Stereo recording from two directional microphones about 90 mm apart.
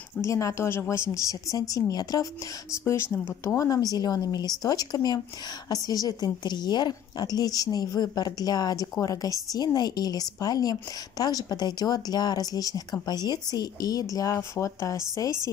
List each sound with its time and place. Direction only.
0.2 s speech: 35° left (ahead or behind)
3.4 s a woman's voice: 40° left (ahead or behind)